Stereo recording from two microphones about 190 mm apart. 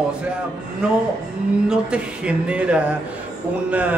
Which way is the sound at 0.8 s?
5° right (ahead or behind).